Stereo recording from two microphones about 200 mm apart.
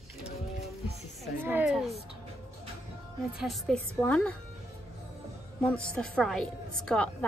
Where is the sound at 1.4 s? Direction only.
5° right (ahead or behind).